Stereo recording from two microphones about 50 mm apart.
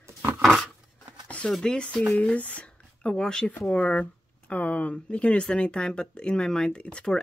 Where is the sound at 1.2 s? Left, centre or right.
Left.